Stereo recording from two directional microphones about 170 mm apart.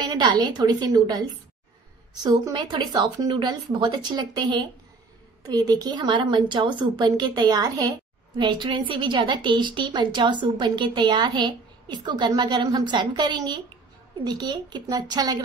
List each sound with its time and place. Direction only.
0.0 s a woman's voice: 25° right (ahead or behind)
2.2 s a woman's voice: 25° right (ahead or behind)